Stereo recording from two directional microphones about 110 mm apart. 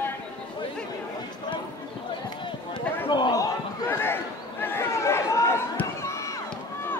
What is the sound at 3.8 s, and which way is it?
Chatter, 20° left (ahead or behind).